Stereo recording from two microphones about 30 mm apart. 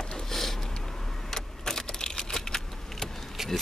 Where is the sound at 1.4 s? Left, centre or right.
Left.